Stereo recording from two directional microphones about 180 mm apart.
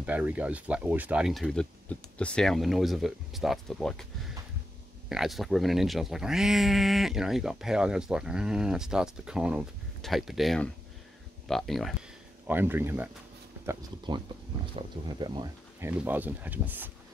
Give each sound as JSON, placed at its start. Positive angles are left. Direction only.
{"t": 0.0, "sound": "speech", "side_deg": -10}
{"t": 5.1, "sound": "speech", "side_deg": 0}
{"t": 12.4, "sound": "speech", "side_deg": -10}
{"t": 14.8, "sound": "speech", "side_deg": -25}
{"t": 15.9, "sound": "speech", "side_deg": -10}